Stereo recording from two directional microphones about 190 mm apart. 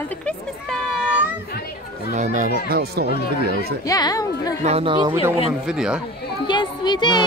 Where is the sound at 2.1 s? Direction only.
40° right (ahead or behind).